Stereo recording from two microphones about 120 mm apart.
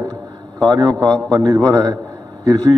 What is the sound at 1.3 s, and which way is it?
Speech, 35° right (ahead or behind).